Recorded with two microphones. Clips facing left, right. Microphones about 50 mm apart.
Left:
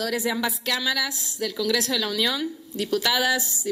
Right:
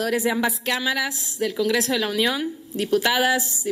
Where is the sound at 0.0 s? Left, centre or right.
Right.